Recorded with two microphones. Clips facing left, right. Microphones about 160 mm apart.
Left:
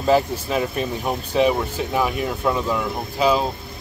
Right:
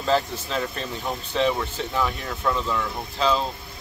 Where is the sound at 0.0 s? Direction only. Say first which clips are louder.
Left 5 dB; 15° left (ahead or behind).